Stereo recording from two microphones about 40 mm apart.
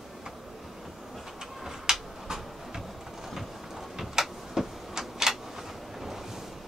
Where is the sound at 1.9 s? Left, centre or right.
Centre.